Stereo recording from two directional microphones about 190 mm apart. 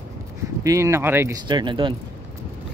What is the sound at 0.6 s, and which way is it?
Speech, 15° right (ahead or behind).